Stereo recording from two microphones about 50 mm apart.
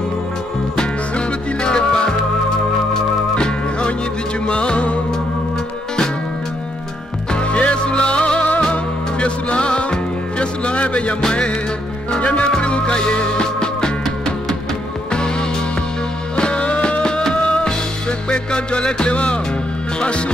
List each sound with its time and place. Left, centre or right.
0.7 s music: centre
7.3 s music: left
16.3 s music: centre